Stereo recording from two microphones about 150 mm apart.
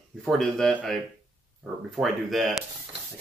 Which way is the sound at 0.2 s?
5° left (ahead or behind).